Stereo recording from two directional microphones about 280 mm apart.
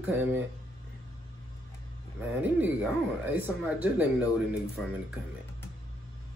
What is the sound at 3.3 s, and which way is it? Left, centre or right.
Speech, centre.